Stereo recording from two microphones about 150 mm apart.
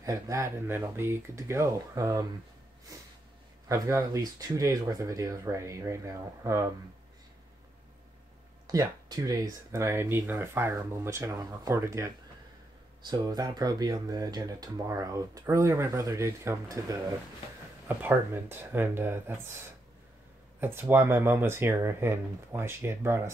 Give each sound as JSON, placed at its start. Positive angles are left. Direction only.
{"t": 0.0, "sound": "speech", "side_deg": -20}
{"t": 8.6, "sound": "speech", "side_deg": -25}
{"t": 20.6, "sound": "speech", "side_deg": -15}